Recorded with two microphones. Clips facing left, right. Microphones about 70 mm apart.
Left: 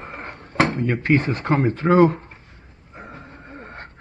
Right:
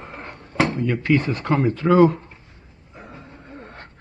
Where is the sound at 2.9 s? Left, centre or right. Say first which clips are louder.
Left 2 dB; left.